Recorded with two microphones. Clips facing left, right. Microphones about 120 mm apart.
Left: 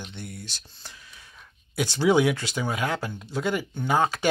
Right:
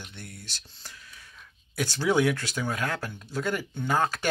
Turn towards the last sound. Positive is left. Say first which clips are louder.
# left 3 dB
turn(degrees=10)  # may be behind; listen again after turning